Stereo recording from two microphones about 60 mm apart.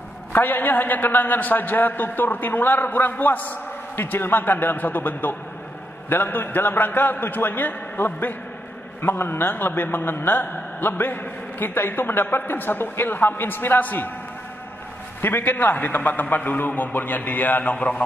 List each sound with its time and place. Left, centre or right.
0.3 s a man's voice: left
15.2 s a man's voice: left